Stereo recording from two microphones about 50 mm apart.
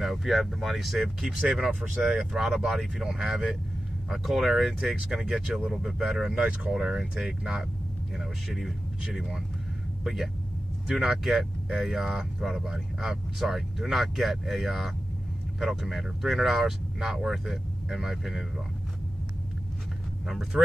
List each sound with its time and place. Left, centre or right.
0.0 s speech: centre
8.2 s speech: centre
20.2 s speech: centre